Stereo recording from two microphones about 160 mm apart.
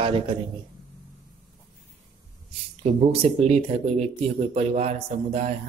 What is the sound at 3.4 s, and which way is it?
Speech, 40° right (ahead or behind).